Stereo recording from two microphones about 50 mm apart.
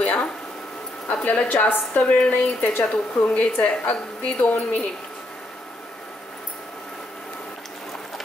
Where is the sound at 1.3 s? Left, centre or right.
Left.